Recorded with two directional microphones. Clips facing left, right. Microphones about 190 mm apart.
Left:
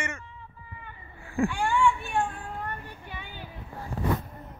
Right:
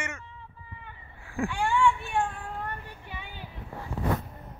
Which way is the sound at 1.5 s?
10° left (ahead or behind).